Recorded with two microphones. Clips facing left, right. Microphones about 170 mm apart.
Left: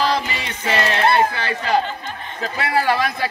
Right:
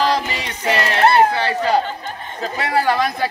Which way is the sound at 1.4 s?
35° right (ahead or behind).